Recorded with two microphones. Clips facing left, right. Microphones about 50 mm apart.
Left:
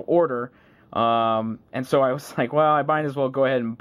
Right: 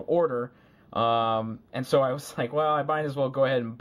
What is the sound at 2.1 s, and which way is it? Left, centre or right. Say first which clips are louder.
Speech: left 5 dB; left.